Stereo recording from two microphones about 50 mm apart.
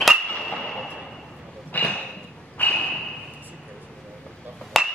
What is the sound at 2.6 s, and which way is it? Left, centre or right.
Whip, left.